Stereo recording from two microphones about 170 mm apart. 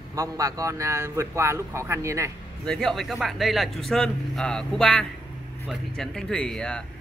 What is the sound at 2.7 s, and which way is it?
Speech, 5° left (ahead or behind).